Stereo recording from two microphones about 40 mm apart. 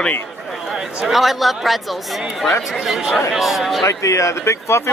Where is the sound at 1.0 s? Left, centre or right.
Centre.